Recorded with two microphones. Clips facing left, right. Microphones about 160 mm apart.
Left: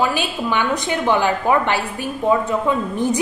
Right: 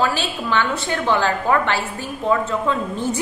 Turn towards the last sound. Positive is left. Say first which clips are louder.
# left 3 dB
turn(degrees=15)  # may be behind; listen again after turning